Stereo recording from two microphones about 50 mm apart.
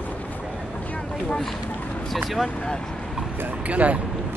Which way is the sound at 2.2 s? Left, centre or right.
Centre.